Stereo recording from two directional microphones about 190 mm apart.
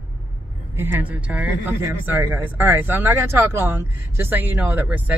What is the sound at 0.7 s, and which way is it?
Speech, 10° right (ahead or behind).